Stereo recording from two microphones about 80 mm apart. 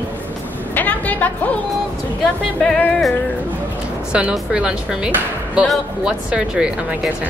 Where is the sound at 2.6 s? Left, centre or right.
Centre.